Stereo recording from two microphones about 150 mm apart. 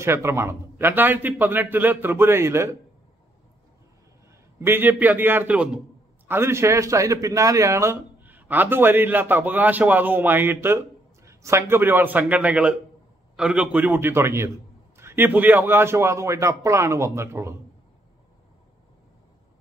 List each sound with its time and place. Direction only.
0.0 s a man's voice: 15° right (ahead or behind)
4.6 s a man's voice: 15° right (ahead or behind)